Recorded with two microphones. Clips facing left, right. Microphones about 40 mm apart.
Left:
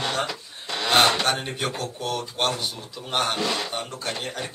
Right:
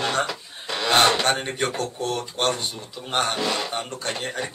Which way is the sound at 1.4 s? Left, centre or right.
Right.